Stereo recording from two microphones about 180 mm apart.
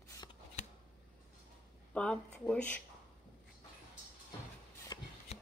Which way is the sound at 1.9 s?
5° left (ahead or behind).